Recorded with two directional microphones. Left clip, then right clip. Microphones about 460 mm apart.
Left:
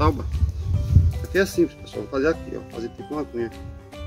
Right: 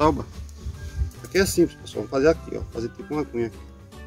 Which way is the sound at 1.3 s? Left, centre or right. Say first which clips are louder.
Even; centre.